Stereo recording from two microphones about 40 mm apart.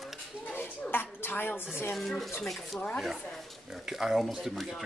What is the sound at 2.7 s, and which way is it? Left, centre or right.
Speech, left.